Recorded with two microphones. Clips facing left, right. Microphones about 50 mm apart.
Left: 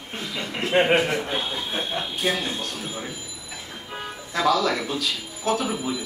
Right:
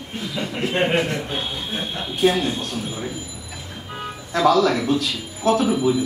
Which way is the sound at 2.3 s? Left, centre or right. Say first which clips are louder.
Right 5 dB; right.